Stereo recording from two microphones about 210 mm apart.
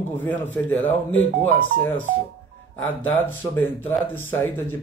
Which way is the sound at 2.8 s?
10° left (ahead or behind).